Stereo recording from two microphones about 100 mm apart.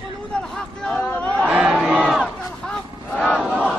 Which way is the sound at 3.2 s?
5° right (ahead or behind).